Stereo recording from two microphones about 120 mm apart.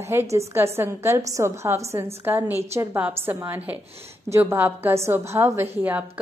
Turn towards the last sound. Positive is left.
turn(degrees=-20)  # may be behind; listen again after turning